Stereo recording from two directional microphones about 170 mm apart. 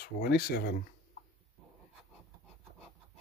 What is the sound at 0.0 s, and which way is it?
Speech, 65° left (ahead or behind).